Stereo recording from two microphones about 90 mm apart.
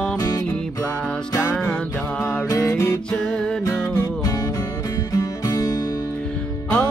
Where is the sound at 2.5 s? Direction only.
30° left (ahead or behind).